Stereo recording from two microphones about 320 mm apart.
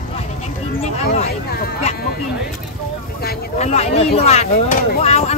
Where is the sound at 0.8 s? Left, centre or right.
Left.